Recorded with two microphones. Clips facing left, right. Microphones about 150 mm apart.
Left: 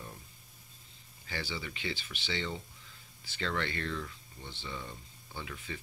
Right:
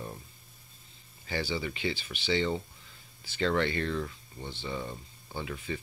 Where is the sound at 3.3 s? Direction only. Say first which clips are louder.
Right 7 dB; 20° right (ahead or behind).